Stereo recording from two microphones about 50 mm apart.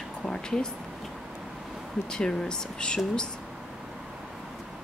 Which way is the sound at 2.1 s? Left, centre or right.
Centre.